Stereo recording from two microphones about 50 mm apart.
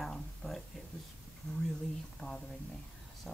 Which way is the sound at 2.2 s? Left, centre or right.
Left.